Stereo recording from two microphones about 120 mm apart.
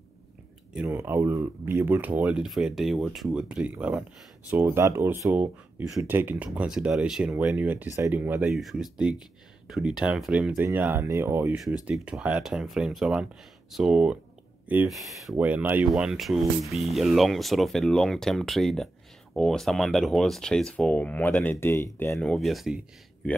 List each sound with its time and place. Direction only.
0.8 s speech: 20° right (ahead or behind)
8.5 s speech: centre (ahead or behind); by 11.5 s 20° right (ahead or behind)
11.8 s speech: 10° right (ahead or behind)
15.3 s speech: 15° right (ahead or behind)
15.9 s speech: 5° right (ahead or behind); by 22.3 s 20° left (ahead or behind)
22.3 s speech: centre (ahead or behind)